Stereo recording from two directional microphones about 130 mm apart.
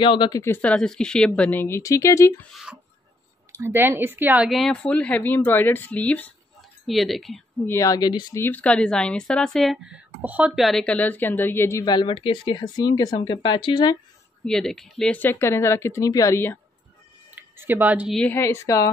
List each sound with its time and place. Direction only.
0.0 s speech: 40° left (ahead or behind)
0.4 s a woman's voice: 15° left (ahead or behind)
3.5 s speech: 20° right (ahead or behind)
4.5 s a woman's voice: 5° left (ahead or behind)
6.9 s speech: centre (ahead or behind)
7.6 s speech: 25° left (ahead or behind)
8.4 s a woman's voice: 10° left (ahead or behind)
9.9 s speech: 10° right (ahead or behind)
10.5 s a woman's voice: centre (ahead or behind); by 11.8 s 20° left (ahead or behind)
11.8 s speech: 35° left (ahead or behind)
14.4 s speech: 5° left (ahead or behind); by 16.5 s 20° left (ahead or behind)
17.4 s speech: 15° right (ahead or behind)
18.1 s a woman's voice: 10° left (ahead or behind)
18.4 s speech: 25° left (ahead or behind)